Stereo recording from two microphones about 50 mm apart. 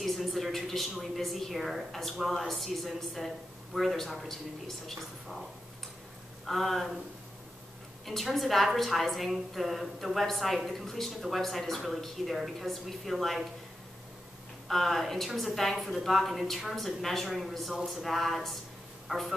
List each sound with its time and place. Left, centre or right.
0.0 s a woman's voice: centre
6.4 s a woman's voice: centre
8.1 s a woman's voice: centre
14.7 s a woman's voice: centre